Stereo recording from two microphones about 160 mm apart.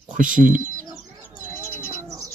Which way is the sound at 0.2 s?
55° right (ahead or behind).